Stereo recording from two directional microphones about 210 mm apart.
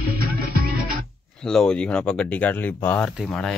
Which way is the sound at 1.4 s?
5° left (ahead or behind).